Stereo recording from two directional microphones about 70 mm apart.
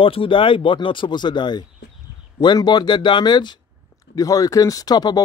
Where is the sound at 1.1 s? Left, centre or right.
Left.